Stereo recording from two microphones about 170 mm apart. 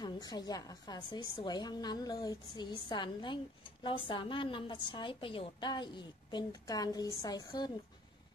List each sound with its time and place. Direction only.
0.0 s a woman's voice: 25° left (ahead or behind)